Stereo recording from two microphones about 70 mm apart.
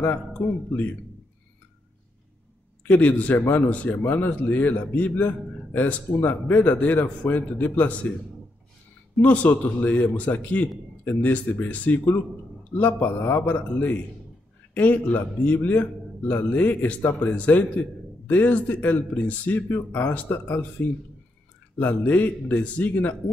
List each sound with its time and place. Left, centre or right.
0.0 s a man's voice: left
2.8 s a man's voice: left
9.2 s a man's voice: left
11.1 s speech: left
11.6 s a man's voice: left
21.7 s a man's voice: left